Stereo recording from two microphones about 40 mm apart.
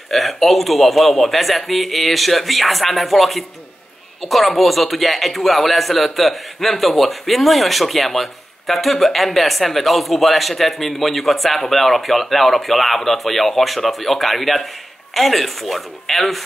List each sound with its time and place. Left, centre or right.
0.1 s speech: centre